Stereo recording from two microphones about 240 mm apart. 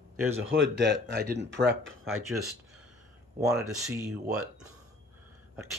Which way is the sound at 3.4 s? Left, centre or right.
Centre.